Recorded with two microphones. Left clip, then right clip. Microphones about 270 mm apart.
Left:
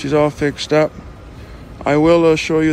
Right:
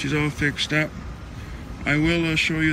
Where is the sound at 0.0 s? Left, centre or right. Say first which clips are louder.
Left 9 dB; centre.